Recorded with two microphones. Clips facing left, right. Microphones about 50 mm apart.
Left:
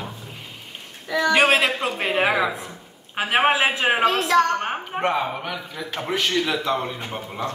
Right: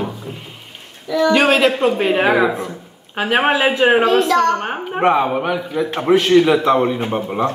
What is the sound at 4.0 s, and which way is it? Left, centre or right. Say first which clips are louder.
Speech: right 6 dB; right.